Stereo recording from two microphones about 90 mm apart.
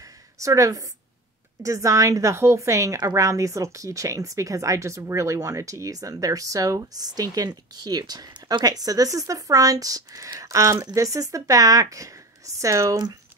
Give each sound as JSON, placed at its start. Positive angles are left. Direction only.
{"t": 0.4, "sound": "speech", "side_deg": -40}